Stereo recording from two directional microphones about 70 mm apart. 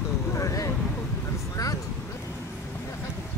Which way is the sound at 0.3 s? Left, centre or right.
Left.